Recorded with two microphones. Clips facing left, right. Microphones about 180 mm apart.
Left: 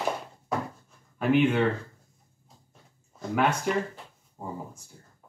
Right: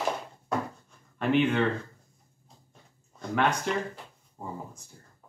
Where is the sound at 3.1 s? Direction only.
5° left (ahead or behind).